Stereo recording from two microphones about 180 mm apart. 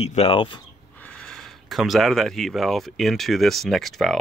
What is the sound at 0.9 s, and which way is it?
Speech, 5° left (ahead or behind).